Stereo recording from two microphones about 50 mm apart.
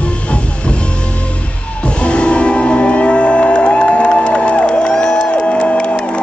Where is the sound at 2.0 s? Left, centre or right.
Left.